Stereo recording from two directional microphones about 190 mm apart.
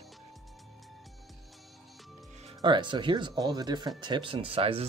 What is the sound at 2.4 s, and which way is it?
Speech, 25° right (ahead or behind).